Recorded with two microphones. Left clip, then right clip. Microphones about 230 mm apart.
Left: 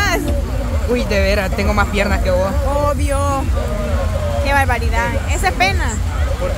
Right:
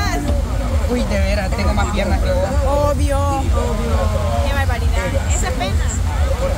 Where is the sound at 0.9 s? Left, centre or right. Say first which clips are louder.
Left 5 dB; left.